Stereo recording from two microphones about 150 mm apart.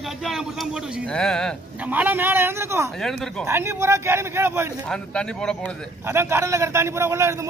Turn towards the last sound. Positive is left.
turn(degrees=-20)  # may be behind; listen again after turning